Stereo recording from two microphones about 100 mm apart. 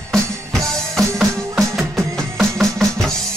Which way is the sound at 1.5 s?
Centre (ahead or behind).